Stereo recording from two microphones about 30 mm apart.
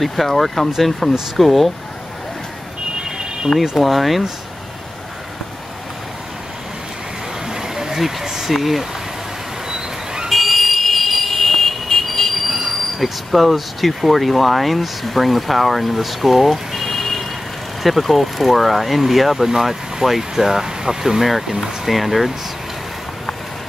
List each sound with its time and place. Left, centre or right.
0.0 s speech: centre
3.7 s speech: centre
7.4 s a sound: centre
8.5 s speech: centre
9.7 s a sound: centre
10.3 s vehicle: centre
12.4 s speech: centre
21.2 s speech: centre